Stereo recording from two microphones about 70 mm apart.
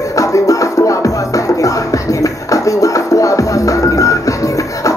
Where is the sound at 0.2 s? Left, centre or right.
Left.